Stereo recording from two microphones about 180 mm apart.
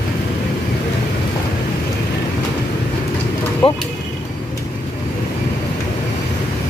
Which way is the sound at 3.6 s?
30° left (ahead or behind).